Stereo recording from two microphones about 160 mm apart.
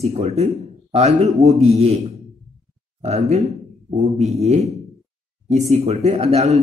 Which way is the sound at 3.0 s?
40° right (ahead or behind).